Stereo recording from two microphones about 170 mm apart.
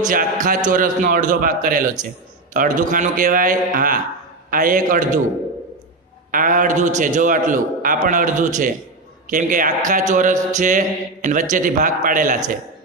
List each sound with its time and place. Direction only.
0.0 s a man's voice: 50° right (ahead or behind)
6.3 s a man's voice: 50° right (ahead or behind)